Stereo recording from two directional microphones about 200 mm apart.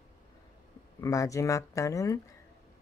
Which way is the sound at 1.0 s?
15° left (ahead or behind).